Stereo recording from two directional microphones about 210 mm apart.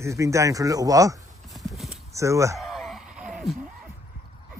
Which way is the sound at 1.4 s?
Centre (ahead or behind).